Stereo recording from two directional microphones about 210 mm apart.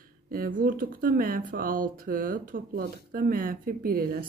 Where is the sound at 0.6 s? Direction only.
40° right (ahead or behind).